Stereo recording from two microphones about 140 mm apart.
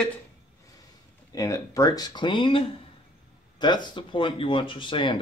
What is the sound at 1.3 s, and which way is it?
Speech, 25° left (ahead or behind).